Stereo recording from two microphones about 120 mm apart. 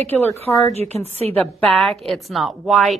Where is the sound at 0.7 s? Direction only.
60° right (ahead or behind).